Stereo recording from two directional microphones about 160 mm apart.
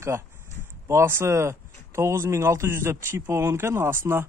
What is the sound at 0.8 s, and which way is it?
Speech, 15° right (ahead or behind).